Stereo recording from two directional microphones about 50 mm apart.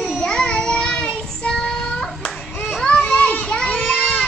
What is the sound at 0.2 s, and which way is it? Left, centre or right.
Child singing, centre.